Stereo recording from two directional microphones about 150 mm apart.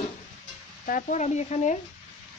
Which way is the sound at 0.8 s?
60° left (ahead or behind).